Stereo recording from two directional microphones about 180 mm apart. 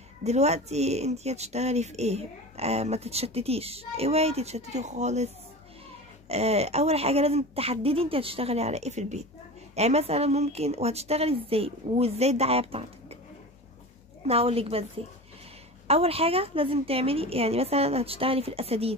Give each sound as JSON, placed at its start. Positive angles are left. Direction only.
{"t": 0.2, "sound": "speech", "side_deg": -35}
{"t": 14.2, "sound": "speech", "side_deg": -35}
{"t": 15.9, "sound": "speech", "side_deg": -35}